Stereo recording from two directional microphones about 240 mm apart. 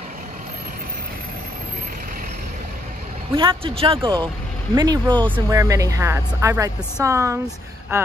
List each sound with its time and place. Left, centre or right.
3.3 s a woman's voice: right